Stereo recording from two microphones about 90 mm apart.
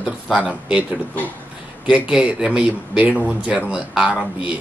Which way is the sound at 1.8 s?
10° right (ahead or behind).